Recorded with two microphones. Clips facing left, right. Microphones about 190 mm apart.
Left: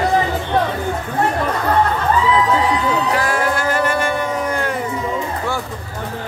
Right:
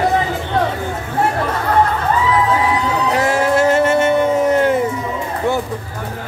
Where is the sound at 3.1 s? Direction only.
25° right (ahead or behind).